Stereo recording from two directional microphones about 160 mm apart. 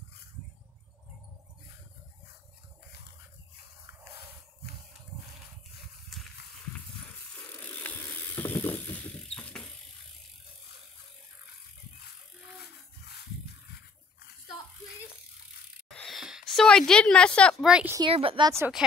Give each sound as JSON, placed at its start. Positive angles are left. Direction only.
{"t": 7.4, "sound": "mechanisms", "side_deg": 10}
{"t": 15.9, "sound": "a woman's voice", "side_deg": 0}
{"t": 17.6, "sound": "speech", "side_deg": -5}
{"t": 18.0, "sound": "speech", "side_deg": -35}
{"t": 18.8, "sound": "speech", "side_deg": -5}